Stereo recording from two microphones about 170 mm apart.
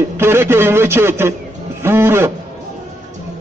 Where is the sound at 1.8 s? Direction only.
15° right (ahead or behind).